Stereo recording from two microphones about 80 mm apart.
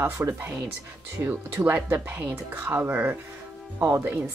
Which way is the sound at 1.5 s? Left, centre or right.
Right.